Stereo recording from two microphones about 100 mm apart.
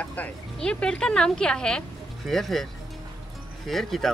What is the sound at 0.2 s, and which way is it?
Speech, 10° left (ahead or behind).